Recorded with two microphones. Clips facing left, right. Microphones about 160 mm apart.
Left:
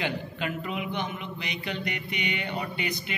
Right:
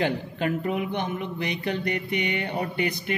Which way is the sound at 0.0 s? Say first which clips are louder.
Right 5 dB; 50° right (ahead or behind).